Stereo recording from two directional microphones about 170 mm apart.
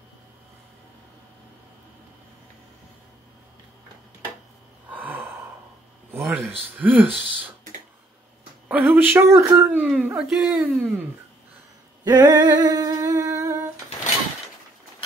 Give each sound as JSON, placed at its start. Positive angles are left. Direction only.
{"t": 4.8, "sound": "gasp", "side_deg": -10}
{"t": 6.1, "sound": "speech", "side_deg": -10}
{"t": 8.6, "sound": "speech", "side_deg": -10}
{"t": 12.0, "sound": "humming", "side_deg": -25}